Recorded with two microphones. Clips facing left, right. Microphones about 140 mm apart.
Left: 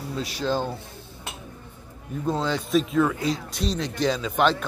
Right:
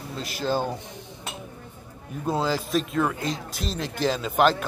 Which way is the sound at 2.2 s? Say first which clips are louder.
Right 1 dB; 5° right (ahead or behind).